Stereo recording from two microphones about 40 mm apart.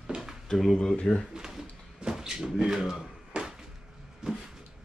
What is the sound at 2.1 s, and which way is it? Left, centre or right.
Speech, centre.